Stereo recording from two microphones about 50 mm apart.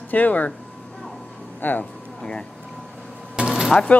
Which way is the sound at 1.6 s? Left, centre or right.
Left.